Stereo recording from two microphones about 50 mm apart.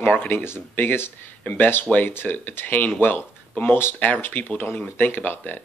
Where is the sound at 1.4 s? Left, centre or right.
Left.